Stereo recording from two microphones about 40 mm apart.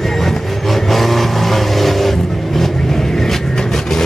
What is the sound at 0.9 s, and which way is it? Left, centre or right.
Vehicle, centre.